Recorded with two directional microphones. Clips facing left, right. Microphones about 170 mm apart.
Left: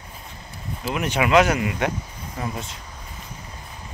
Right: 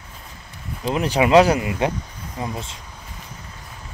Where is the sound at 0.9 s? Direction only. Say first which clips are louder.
Right 4 dB; 35° right (ahead or behind).